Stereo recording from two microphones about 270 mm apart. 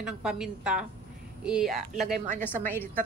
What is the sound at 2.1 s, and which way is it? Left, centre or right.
Speech, right.